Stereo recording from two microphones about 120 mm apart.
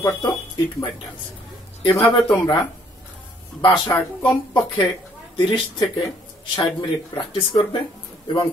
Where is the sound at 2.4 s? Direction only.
30° left (ahead or behind).